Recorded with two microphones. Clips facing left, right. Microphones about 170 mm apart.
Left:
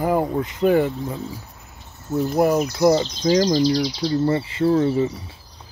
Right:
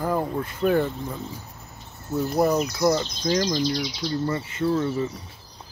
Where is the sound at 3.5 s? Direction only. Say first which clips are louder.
Left 6 dB; 35° left (ahead or behind).